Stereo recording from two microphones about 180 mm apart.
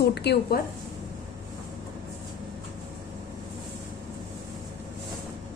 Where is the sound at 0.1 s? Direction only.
65° left (ahead or behind).